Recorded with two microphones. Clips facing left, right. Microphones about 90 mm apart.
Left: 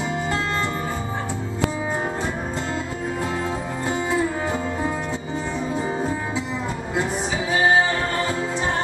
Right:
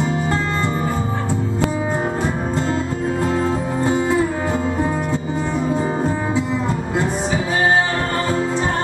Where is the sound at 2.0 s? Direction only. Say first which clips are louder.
Right 5 dB; 15° right (ahead or behind).